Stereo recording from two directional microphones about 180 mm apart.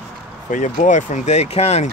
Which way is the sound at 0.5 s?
45° left (ahead or behind).